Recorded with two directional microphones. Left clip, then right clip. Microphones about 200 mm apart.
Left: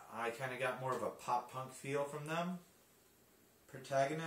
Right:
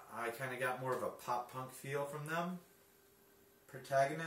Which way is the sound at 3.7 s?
5° right (ahead or behind).